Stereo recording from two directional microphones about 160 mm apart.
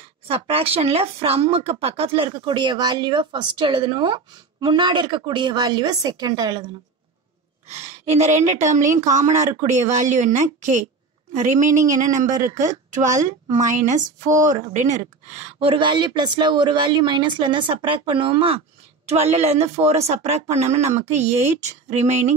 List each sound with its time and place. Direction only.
0.3 s speech: 40° right (ahead or behind)
7.6 s speech: 45° right (ahead or behind)